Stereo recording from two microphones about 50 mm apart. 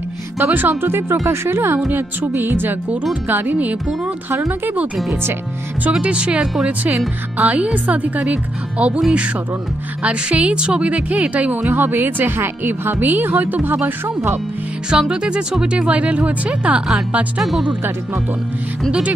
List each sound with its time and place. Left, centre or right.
0.4 s speech: right
5.9 s a woman's voice: right
10.0 s a woman's voice: right
11.7 s speech: right
14.9 s a woman's voice: centre
17.4 s speech: centre